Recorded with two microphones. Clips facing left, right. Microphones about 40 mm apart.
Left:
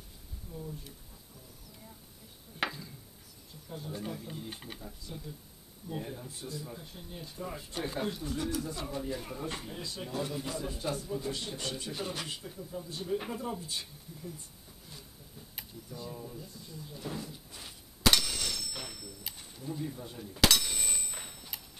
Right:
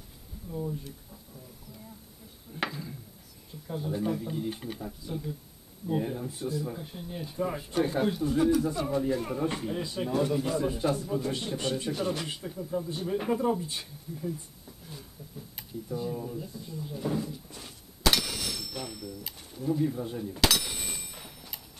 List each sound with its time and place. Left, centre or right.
0.5 s speech: right
2.6 s speech: centre
3.6 s speech: centre
4.7 s speech: centre
7.7 s speech: centre
11.9 s speech: centre
12.3 s speech: centre
12.5 s speech: right
15.9 s speech: centre
17.3 s a sound: centre
20.3 s a sound: centre